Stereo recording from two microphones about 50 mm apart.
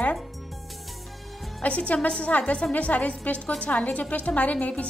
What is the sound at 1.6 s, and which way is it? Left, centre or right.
A woman's voice, left.